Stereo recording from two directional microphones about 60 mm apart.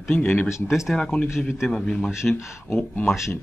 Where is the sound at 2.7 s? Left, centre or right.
Left.